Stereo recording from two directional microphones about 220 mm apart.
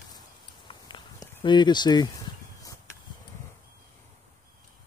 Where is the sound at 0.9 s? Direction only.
20° left (ahead or behind).